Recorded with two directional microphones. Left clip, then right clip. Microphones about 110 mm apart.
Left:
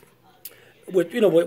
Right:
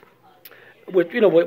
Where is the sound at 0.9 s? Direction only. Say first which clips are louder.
Right 2 dB; 35° left (ahead or behind).